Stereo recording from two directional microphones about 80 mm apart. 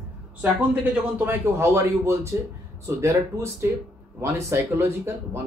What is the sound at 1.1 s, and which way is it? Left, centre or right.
Speech, right.